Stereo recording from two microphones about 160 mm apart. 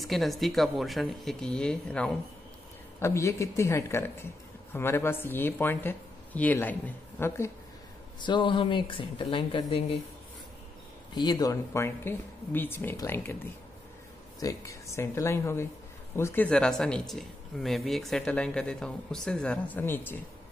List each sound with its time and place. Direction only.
0.0 s speech: centre (ahead or behind)
3.0 s speech: 15° left (ahead or behind)
8.2 s speech: 30° left (ahead or behind)
11.1 s speech: 25° left (ahead or behind)